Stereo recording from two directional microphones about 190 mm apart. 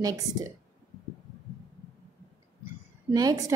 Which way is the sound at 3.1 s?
20° right (ahead or behind).